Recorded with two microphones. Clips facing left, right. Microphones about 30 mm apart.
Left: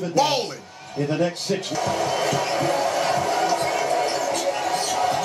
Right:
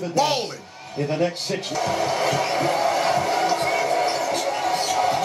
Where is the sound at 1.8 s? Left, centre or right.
Centre.